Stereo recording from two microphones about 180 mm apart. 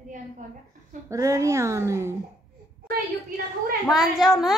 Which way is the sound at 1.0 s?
20° right (ahead or behind).